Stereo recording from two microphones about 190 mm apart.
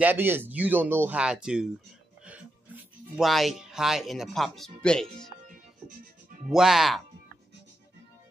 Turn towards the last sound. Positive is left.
turn(degrees=0)  # may be behind; listen again after turning